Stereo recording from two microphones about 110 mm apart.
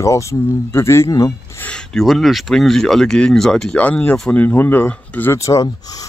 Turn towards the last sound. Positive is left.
turn(degrees=30)  # may be behind; listen again after turning